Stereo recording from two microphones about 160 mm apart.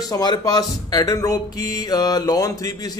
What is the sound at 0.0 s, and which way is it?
Mantra, 25° left (ahead or behind).